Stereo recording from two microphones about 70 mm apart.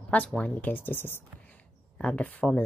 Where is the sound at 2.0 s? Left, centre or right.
Centre.